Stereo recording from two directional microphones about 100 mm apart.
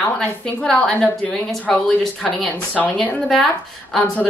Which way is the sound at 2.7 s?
15° left (ahead or behind).